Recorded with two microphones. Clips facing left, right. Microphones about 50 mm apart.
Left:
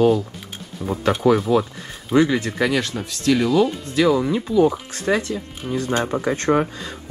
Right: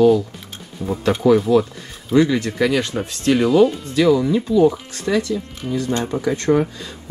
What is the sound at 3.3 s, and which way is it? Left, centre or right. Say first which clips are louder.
Speech: right 4 dB; centre.